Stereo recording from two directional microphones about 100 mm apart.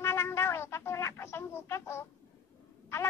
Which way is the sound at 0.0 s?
25° left (ahead or behind).